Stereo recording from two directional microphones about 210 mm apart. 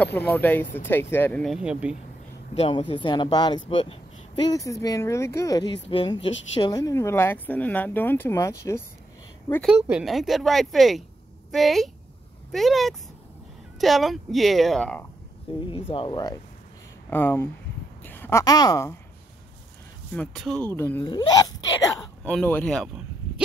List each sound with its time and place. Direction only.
0.0 s speech: 10° left (ahead or behind)
2.6 s speech: 25° left (ahead or behind)
9.7 s speech: 5° right (ahead or behind)
15.7 s speech: 25° left (ahead or behind)
17.1 s a woman's voice: 10° left (ahead or behind)
20.2 s speech: centre (ahead or behind); by 21.5 s 20° left (ahead or behind)
22.2 s speech: 5° left (ahead or behind)